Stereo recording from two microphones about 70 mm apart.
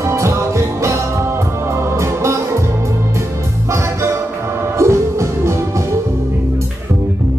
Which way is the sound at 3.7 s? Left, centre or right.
Right.